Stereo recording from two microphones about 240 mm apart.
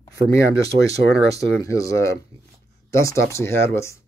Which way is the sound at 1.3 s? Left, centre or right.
Centre.